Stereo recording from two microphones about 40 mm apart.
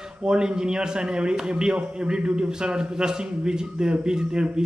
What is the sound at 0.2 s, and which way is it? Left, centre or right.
A man's voice, right.